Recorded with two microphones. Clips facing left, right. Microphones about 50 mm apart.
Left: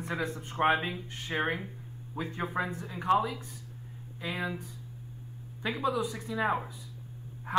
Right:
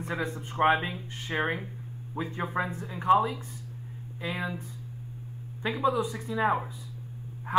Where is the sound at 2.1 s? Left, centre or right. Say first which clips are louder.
Right 2 dB; centre.